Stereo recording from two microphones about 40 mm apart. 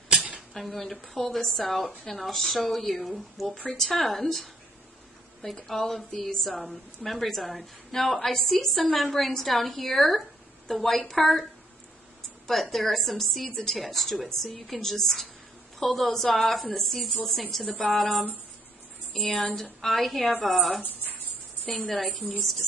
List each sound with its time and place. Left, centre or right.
0.6 s a woman's voice: centre
12.4 s a woman's voice: centre
20.8 s a sound: left
21.9 s a woman's voice: centre